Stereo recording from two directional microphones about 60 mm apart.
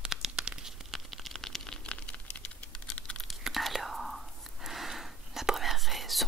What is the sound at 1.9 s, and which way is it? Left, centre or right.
Computer keyboard, centre.